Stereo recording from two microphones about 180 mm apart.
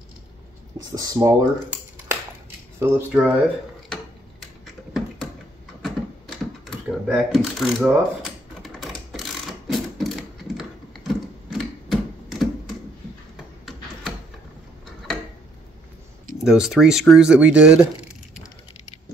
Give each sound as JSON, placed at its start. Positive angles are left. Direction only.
{"t": 0.9, "sound": "speech", "side_deg": -20}
{"t": 5.8, "sound": "typing", "side_deg": 0}
{"t": 8.6, "sound": "sewing machine", "side_deg": 0}
{"t": 10.6, "sound": "mechanisms", "side_deg": 0}
{"t": 16.4, "sound": "speech", "side_deg": 0}